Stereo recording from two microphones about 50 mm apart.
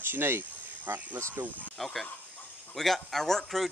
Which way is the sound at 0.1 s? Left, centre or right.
Right.